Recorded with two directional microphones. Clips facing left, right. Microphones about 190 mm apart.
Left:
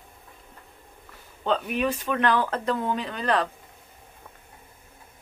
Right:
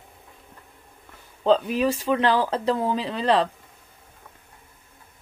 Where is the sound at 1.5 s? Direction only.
30° right (ahead or behind).